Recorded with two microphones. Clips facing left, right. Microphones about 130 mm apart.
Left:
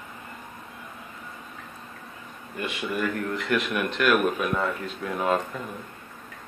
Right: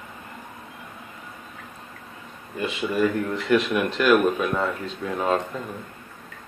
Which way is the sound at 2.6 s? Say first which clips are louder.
Right 5 dB; 30° right (ahead or behind).